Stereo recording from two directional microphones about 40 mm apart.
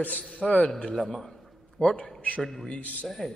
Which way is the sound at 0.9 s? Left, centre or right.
Centre.